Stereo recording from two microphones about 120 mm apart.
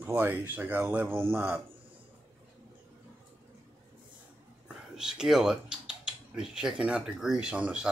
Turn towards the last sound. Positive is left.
turn(degrees=-10)  # may be behind; listen again after turning